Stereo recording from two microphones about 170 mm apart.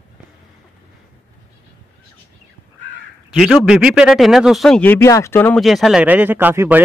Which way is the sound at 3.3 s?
5° right (ahead or behind).